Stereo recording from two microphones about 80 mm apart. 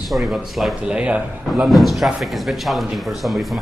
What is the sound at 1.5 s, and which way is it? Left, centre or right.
Speech, centre.